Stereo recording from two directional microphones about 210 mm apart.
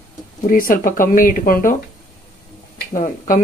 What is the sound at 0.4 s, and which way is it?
Speech, 40° left (ahead or behind).